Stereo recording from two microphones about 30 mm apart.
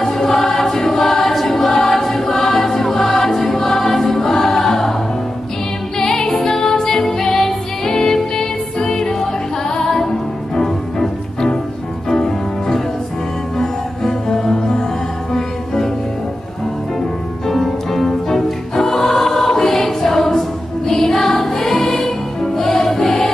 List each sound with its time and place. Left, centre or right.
0.0 s choir: centre
1.9 s music: centre
5.9 s music: left
17.5 s choir: centre
20.9 s music: centre